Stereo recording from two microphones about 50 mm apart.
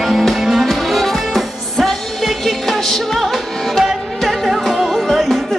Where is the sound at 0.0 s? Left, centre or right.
Centre.